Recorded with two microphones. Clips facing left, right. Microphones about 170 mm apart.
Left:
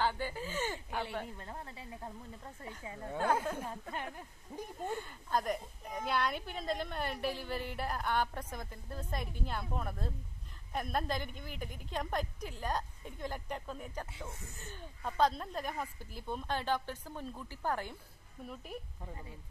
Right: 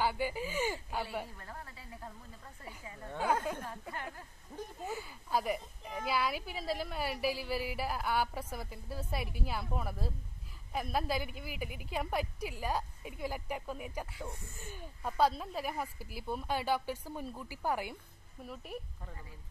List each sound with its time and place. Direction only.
0.0 s speech: 10° right (ahead or behind)
1.3 s speech: 25° left (ahead or behind)
4.8 s speech: 5° right (ahead or behind)